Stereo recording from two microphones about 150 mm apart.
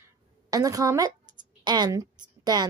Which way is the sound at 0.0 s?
25° right (ahead or behind).